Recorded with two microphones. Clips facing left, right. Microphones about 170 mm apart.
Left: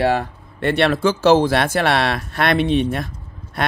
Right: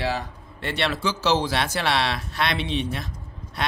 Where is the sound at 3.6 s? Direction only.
55° left (ahead or behind).